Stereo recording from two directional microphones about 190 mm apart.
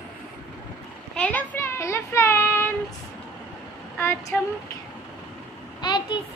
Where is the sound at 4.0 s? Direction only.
15° left (ahead or behind).